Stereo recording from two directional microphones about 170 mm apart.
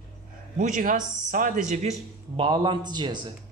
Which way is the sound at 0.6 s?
50° right (ahead or behind).